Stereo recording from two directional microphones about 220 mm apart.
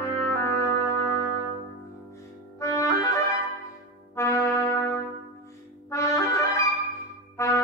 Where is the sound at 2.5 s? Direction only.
15° left (ahead or behind).